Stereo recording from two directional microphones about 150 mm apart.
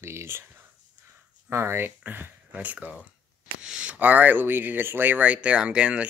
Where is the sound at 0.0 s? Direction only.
15° right (ahead or behind).